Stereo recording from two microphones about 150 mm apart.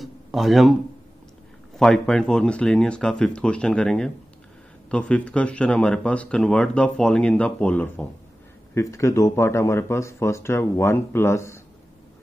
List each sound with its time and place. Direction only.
0.0 s a sound: centre (ahead or behind)
1.8 s speech: 5° left (ahead or behind)
8.7 s speech: 20° left (ahead or behind)